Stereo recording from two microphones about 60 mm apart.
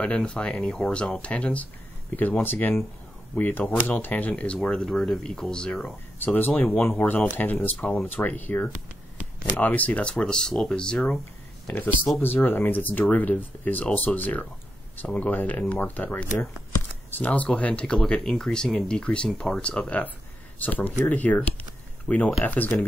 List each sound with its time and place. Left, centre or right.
0.0 s speech: centre
4.6 s speech: centre
6.1 s speech: left
11.6 s speech: left